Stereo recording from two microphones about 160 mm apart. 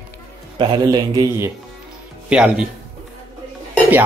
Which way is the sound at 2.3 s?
5° right (ahead or behind).